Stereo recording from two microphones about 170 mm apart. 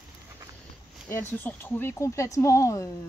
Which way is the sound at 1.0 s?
10° left (ahead or behind).